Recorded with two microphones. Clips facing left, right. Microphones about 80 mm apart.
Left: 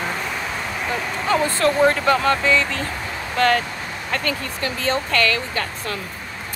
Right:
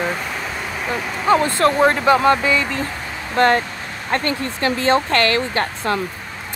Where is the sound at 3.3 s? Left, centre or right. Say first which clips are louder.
Right 3 dB; right.